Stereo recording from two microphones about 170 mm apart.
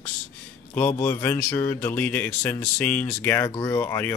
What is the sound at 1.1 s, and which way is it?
Speech, 15° left (ahead or behind).